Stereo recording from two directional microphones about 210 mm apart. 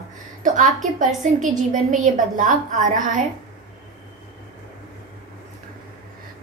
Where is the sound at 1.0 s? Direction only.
35° right (ahead or behind).